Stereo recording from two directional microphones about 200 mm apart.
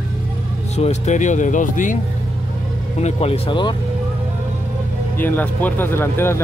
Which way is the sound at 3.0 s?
30° left (ahead or behind).